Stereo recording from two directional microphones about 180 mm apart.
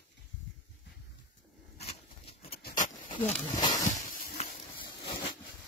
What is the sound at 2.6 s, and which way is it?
Dog, 45° left (ahead or behind).